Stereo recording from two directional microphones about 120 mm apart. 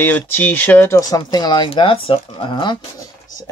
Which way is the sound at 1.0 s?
30° left (ahead or behind).